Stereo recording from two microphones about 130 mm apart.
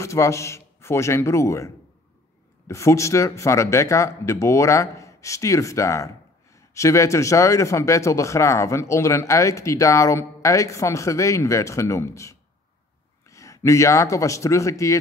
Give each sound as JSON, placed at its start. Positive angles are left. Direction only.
{"t": 0.0, "sound": "a man's voice", "side_deg": 20}